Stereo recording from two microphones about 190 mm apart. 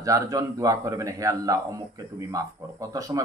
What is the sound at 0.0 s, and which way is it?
A man's voice, 20° right (ahead or behind).